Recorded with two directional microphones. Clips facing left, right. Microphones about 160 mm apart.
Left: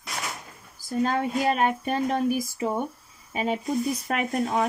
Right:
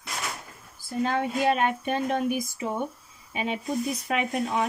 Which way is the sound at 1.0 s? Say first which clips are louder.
Even; 40° left (ahead or behind).